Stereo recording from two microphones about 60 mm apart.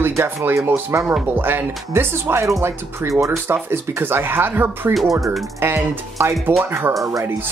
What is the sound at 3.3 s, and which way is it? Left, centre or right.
Speech, right.